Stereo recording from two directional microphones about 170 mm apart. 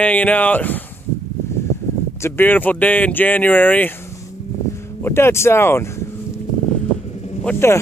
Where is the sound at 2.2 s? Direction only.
10° left (ahead or behind).